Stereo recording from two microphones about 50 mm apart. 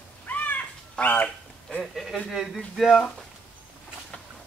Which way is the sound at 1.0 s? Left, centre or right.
Left.